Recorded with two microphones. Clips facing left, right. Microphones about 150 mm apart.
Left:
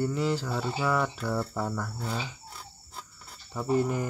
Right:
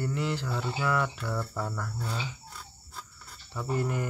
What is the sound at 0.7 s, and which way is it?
Speech, 20° left (ahead or behind).